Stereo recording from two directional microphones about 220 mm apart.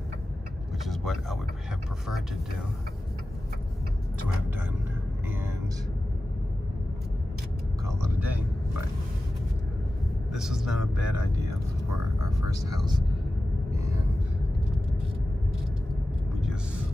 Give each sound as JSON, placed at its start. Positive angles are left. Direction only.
{"t": 0.8, "sound": "speech", "side_deg": 0}
{"t": 7.8, "sound": "vehicle", "side_deg": -10}
{"t": 10.3, "sound": "speech", "side_deg": 0}
{"t": 12.2, "sound": "speech", "side_deg": -15}